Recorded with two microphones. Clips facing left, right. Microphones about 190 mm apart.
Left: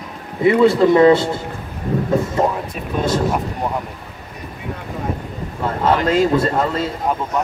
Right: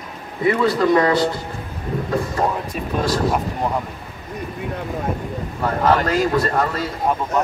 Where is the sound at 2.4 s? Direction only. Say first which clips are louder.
Left 2 dB; 25° left (ahead or behind).